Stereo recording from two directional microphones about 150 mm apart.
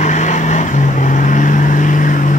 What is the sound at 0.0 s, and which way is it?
Vehicle, 55° left (ahead or behind).